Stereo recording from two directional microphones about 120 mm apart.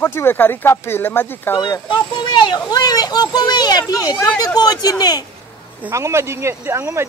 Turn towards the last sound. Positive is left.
turn(degrees=-25)  # may be behind; listen again after turning